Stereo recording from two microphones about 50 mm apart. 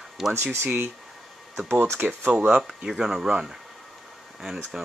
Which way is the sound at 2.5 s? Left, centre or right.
Centre.